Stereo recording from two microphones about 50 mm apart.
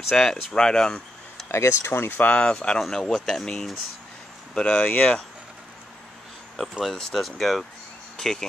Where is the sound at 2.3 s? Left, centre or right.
Centre.